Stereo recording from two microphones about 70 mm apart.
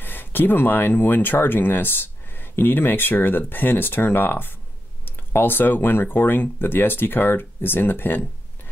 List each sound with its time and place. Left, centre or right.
0.0 s speech: left